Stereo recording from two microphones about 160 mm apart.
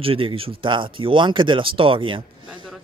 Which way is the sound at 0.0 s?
35° right (ahead or behind).